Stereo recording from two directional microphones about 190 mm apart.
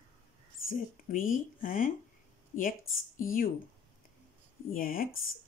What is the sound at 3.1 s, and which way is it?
Speech, 45° left (ahead or behind).